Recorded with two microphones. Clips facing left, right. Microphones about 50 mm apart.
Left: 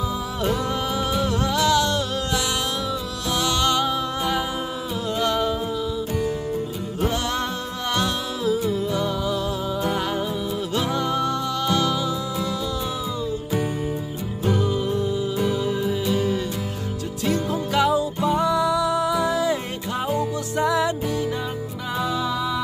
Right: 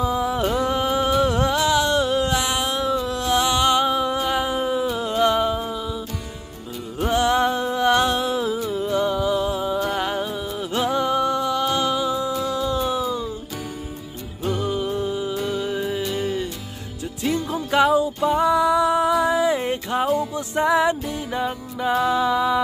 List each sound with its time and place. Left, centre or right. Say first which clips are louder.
0.0 s music: right 4 dB; right
7.1 s music: right 9 dB; centre
14.4 s music: left 1 dB; centre